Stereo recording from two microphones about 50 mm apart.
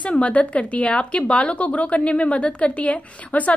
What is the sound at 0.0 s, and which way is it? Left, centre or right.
A woman's voice, left.